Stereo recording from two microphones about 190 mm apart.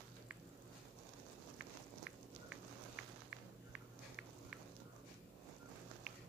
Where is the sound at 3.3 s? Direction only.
5° right (ahead or behind).